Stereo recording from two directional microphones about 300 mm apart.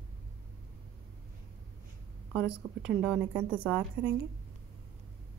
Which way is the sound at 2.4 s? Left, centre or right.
Right.